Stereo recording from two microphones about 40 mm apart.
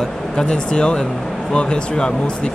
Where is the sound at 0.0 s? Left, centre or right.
Centre.